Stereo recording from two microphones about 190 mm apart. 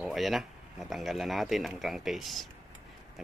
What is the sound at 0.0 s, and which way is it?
Speech, centre (ahead or behind).